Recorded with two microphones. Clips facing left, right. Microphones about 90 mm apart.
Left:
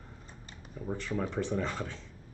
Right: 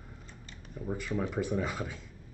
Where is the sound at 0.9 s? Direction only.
10° right (ahead or behind).